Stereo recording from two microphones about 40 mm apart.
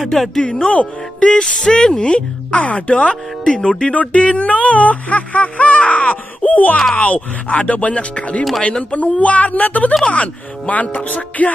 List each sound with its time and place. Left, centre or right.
0.0 s speech: centre
0.7 s speech: left
3.5 s speech: centre
3.9 s speech: left